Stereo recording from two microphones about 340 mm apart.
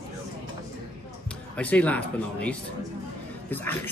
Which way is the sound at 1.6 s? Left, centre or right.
Centre.